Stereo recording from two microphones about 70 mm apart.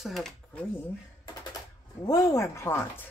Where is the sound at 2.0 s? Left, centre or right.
Left.